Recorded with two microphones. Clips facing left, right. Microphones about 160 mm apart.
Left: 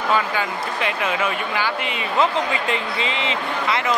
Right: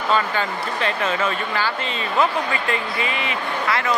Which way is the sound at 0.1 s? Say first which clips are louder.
Right 1 dB; 10° left (ahead or behind).